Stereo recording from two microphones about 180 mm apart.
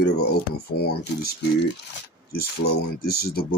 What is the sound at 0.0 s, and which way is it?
Speech, 60° left (ahead or behind).